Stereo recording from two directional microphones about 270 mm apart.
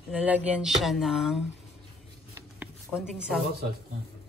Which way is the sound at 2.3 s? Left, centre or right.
Centre.